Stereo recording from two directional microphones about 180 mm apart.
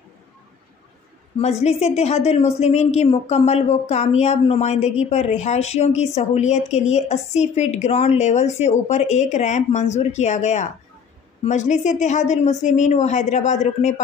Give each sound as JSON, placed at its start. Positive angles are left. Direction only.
{"t": 1.4, "sound": "a woman's voice", "side_deg": 35}